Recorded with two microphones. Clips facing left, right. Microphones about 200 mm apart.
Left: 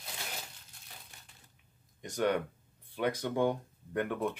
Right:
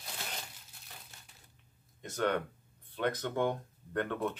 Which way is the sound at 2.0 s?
15° left (ahead or behind).